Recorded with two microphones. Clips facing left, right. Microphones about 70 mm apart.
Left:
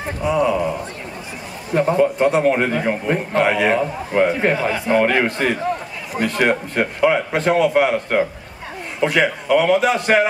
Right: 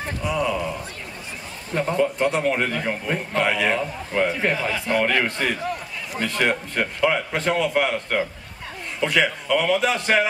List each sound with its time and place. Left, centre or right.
0.2 s a man's voice: centre
3.8 s a man's voice: centre
4.3 s a man's voice: centre